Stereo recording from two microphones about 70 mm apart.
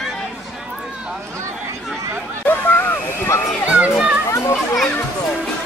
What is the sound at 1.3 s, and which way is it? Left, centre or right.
Speech, right.